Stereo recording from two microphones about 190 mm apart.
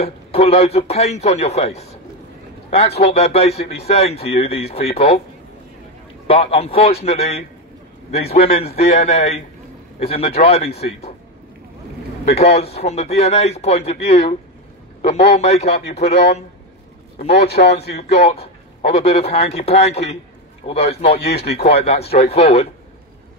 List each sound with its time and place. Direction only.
0.0 s a man's voice: 30° left (ahead or behind)
3.0 s a man's voice: 35° left (ahead or behind)
6.2 s a man's voice: 30° left (ahead or behind)
12.3 s a man's voice: 35° left (ahead or behind)
17.3 s a man's voice: 60° left (ahead or behind)
18.1 s a man's voice: 35° left (ahead or behind)
21.2 s a man's voice: 60° left (ahead or behind)
21.6 s a man's voice: 35° left (ahead or behind)